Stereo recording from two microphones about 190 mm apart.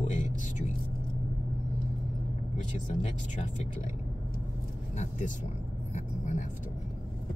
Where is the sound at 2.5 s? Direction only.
40° left (ahead or behind).